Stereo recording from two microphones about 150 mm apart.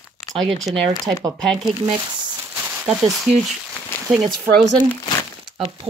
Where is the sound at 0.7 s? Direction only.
Centre (ahead or behind).